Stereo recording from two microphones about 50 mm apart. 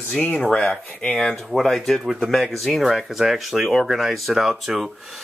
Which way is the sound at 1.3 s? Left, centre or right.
Centre.